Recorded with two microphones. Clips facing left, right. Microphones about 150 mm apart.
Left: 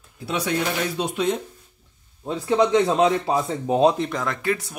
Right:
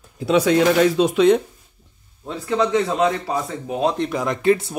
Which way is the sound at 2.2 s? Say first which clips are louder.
Left 1 dB; 20° left (ahead or behind).